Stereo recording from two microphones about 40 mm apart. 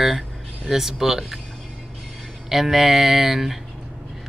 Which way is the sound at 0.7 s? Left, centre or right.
Centre.